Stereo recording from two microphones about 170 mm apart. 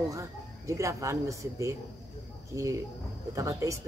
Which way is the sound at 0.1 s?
15° right (ahead or behind).